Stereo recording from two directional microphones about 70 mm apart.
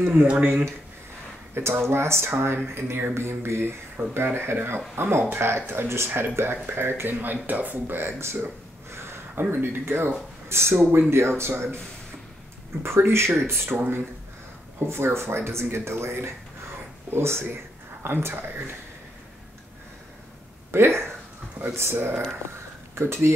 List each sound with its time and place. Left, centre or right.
0.1 s speech: centre
1.5 s speech: right
12.8 s speech: right
20.7 s speech: right